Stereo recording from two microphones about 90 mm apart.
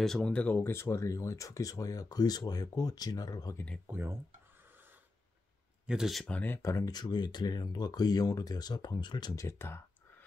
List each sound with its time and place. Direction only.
0.0 s speech: 5° left (ahead or behind); by 3.5 s 45° left (ahead or behind)
3.8 s speech: 25° right (ahead or behind)
5.9 s speech: 5° right (ahead or behind)
6.2 s speech: 15° left (ahead or behind)
6.5 s speech: 35° left (ahead or behind)
6.9 s speech: 50° left (ahead or behind)
9.3 s speech: 35° left (ahead or behind)